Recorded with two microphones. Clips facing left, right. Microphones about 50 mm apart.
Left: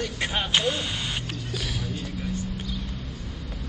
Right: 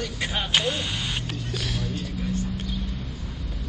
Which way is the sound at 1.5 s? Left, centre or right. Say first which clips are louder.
Right 1 dB; centre.